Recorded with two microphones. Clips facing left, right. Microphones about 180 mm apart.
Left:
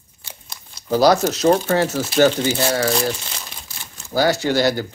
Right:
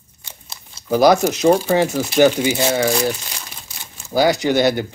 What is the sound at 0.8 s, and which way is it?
Speech, 15° right (ahead or behind).